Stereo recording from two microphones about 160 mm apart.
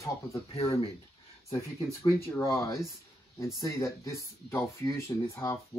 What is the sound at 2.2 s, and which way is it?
Speech, 15° left (ahead or behind).